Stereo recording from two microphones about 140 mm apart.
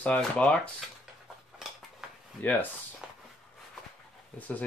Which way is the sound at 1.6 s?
5° right (ahead or behind).